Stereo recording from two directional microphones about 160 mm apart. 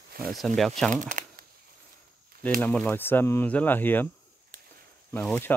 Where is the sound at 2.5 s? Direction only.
10° left (ahead or behind).